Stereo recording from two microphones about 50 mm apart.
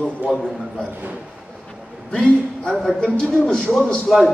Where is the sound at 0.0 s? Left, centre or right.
Centre.